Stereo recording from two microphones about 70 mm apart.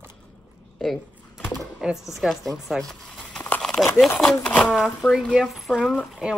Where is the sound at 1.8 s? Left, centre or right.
Centre.